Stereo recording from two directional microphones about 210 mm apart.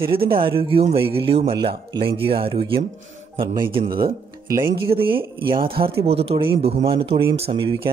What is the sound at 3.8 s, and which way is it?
Speech, 45° right (ahead or behind).